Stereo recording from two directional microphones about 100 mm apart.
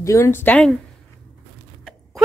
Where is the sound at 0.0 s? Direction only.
30° left (ahead or behind).